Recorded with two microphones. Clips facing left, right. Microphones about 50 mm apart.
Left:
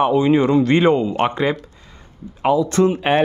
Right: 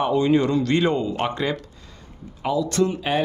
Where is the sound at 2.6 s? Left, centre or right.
Left.